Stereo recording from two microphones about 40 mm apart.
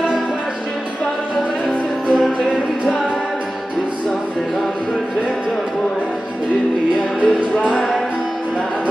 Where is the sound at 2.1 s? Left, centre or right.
Centre.